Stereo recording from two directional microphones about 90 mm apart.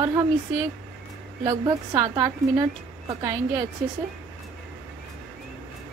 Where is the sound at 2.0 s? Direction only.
40° right (ahead or behind).